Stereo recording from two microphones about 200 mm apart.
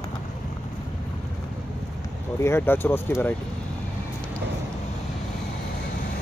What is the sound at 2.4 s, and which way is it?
Speech, 10° left (ahead or behind).